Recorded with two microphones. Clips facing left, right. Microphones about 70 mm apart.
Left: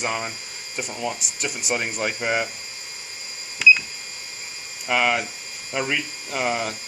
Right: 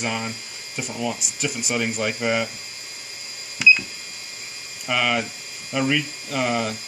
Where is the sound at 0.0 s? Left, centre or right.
Centre.